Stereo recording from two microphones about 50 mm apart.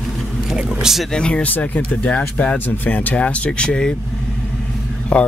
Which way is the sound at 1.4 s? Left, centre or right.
Left.